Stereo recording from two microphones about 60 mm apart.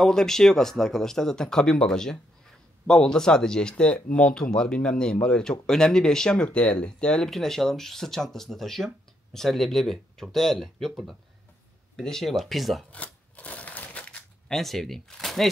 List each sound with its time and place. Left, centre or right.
0.0 s speech: centre
12.9 s crushing: left
14.5 s speech: centre